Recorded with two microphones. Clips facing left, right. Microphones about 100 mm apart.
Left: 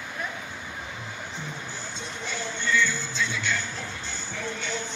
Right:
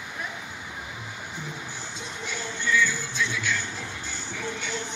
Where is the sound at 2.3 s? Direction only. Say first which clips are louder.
Even; 5° right (ahead or behind).